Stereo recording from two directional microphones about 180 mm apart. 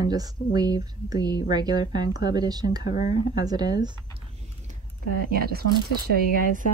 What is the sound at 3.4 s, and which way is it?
Speech, 20° right (ahead or behind).